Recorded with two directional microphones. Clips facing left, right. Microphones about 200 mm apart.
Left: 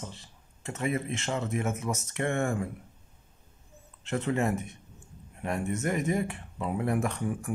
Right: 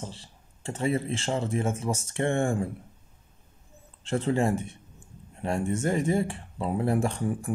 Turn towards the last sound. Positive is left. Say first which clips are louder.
# right 3 dB
turn(degrees=-30)  # may be behind; listen again after turning